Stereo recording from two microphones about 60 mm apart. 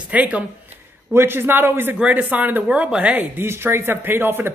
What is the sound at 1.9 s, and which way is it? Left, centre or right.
Speech, right.